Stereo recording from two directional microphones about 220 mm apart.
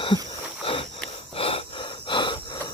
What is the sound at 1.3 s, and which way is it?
Gasp, 25° left (ahead or behind).